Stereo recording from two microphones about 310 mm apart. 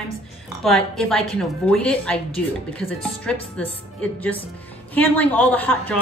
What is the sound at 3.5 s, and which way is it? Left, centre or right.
Speech, centre.